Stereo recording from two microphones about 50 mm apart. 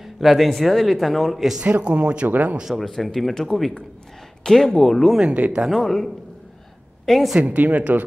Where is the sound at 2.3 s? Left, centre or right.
Right.